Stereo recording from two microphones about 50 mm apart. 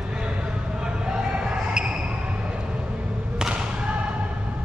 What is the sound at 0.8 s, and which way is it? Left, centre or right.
Basketball bounce, centre.